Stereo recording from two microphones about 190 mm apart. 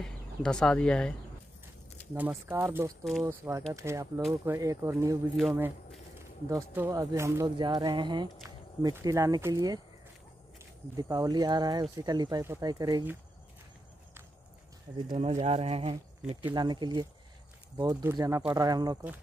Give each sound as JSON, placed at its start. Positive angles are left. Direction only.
{"t": 0.0, "sound": "speech", "side_deg": 5}
{"t": 2.1, "sound": "speech", "side_deg": -10}
{"t": 3.0, "sound": "speech", "side_deg": 0}
{"t": 3.3, "sound": "speech", "side_deg": -15}
{"t": 11.0, "sound": "speech", "side_deg": -20}
{"t": 15.0, "sound": "speech", "side_deg": -35}
{"t": 16.5, "sound": "speech", "side_deg": -25}